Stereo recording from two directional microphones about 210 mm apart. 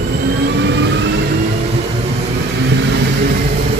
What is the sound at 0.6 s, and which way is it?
Vehicle, 55° right (ahead or behind).